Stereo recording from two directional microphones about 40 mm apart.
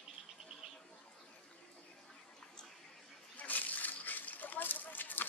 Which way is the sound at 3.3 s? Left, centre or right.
Left.